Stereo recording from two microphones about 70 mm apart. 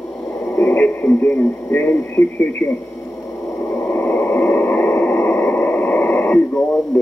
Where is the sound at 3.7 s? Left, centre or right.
Left.